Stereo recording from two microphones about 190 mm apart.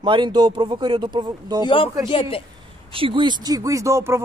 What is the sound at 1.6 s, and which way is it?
Speech, 25° left (ahead or behind).